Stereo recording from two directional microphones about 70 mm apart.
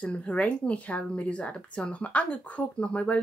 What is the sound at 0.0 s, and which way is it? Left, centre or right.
Speech, left.